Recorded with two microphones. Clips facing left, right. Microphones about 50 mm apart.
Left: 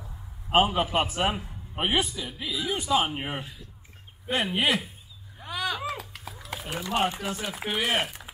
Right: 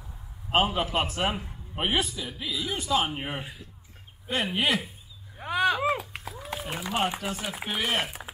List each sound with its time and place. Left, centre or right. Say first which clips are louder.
0.0 s a man's voice: left 1 dB; centre
5.4 s a sound: right 6 dB; right
6.7 s speech: left 3 dB; centre
7.2 s a man's voice: even; centre